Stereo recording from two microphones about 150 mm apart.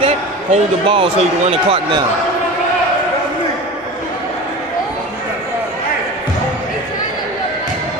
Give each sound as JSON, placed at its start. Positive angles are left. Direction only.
{"t": 0.0, "sound": "speech", "side_deg": -40}